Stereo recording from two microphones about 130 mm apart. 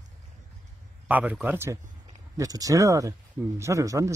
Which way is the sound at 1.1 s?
10° right (ahead or behind).